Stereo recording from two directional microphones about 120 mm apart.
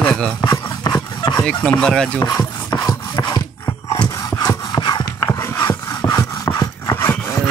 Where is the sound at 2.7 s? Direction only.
35° left (ahead or behind).